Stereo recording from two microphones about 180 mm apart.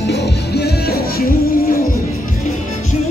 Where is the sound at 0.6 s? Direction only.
60° left (ahead or behind).